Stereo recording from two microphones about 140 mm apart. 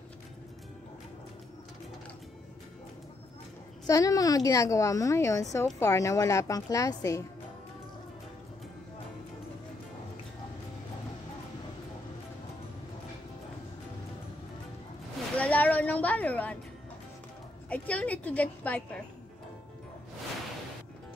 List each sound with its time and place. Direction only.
3.8 s a woman's voice: 25° left (ahead or behind)
15.3 s a sound: 10° left (ahead or behind)
17.6 s music: 10° left (ahead or behind)